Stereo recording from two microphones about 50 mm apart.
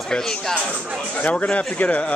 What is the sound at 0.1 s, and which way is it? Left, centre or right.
Speech, centre.